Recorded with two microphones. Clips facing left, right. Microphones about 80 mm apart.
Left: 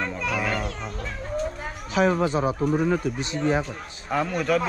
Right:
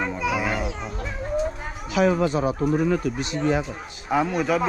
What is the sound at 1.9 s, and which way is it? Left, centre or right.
Speech, left.